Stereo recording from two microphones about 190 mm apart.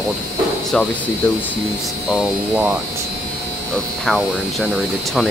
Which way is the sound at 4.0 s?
Centre (ahead or behind).